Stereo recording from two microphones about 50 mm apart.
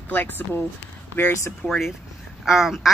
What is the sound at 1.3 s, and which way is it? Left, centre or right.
Speech, left.